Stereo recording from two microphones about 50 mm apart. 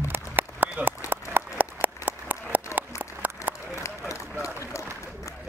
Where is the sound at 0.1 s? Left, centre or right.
Right.